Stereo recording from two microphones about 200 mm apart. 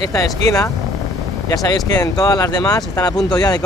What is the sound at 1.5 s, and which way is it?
Speech, 20° left (ahead or behind).